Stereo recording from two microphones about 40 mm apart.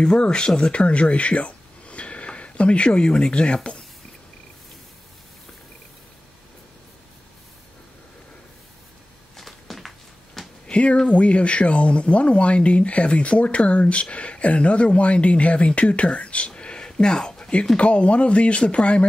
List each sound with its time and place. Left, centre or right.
0.0 s speech: left
9.4 s a sound: centre
10.7 s speech: left